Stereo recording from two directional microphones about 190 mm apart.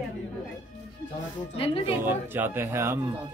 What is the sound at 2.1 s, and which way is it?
A man's voice, 10° right (ahead or behind).